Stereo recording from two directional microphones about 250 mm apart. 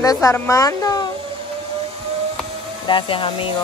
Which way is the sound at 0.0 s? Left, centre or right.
Centre.